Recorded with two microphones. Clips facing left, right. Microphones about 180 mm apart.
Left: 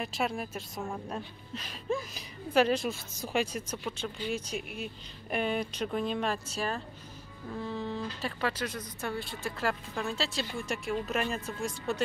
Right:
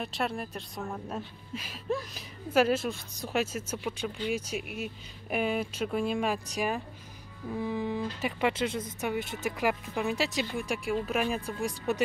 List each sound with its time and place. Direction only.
0.0 s a woman's voice: centre (ahead or behind); by 12.0 s 15° right (ahead or behind)